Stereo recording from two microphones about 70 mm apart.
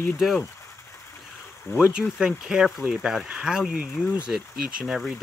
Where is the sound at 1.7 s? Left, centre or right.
Left.